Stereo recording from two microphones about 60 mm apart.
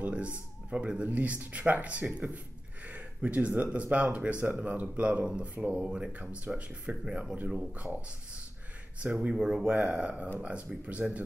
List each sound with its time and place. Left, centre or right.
0.0 s speech: right
7.1 s speech: centre
7.3 s speech: right
9.0 s speech: centre